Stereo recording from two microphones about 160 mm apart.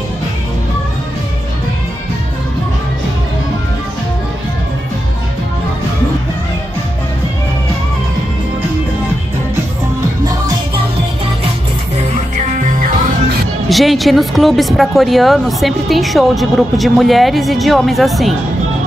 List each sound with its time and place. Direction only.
12.1 s music: 50° right (ahead or behind)
13.7 s speech: centre (ahead or behind)